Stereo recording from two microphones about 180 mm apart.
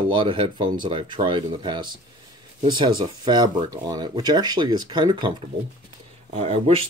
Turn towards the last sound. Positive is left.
turn(degrees=-35)  # may be behind; listen again after turning